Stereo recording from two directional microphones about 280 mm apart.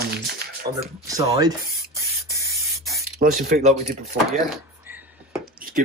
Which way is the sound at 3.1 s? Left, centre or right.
Right.